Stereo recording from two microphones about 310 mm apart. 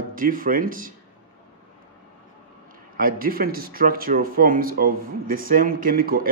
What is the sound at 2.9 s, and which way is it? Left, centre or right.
Speech, right.